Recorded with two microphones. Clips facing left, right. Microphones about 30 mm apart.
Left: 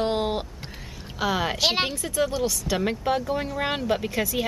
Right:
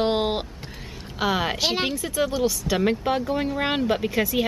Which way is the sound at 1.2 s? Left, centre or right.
Centre.